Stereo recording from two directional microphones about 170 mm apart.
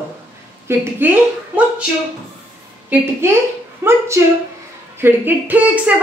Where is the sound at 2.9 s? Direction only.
15° right (ahead or behind).